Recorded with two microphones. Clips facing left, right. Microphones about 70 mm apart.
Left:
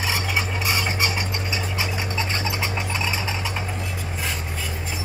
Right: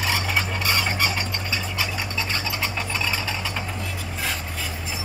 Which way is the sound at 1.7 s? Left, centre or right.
Left.